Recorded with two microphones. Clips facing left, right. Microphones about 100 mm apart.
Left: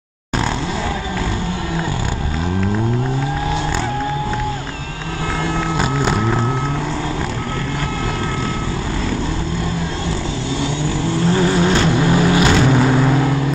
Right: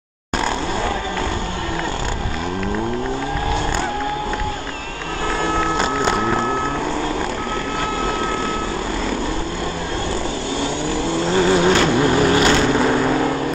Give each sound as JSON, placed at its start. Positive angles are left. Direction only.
{"t": 11.3, "sound": "vehicle", "side_deg": -25}
{"t": 12.1, "sound": "vehicle", "side_deg": 10}